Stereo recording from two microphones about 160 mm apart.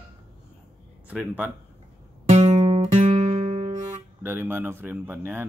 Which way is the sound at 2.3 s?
40° right (ahead or behind).